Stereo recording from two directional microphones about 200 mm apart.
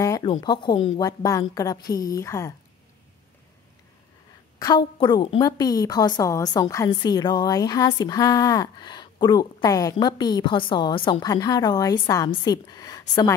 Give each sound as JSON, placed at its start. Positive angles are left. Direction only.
{"t": 0.0, "sound": "a woman's voice", "side_deg": 20}
{"t": 4.6, "sound": "a woman's voice", "side_deg": 20}